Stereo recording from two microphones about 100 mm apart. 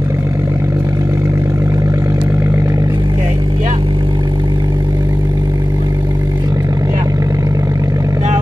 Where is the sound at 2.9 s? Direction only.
40° right (ahead or behind).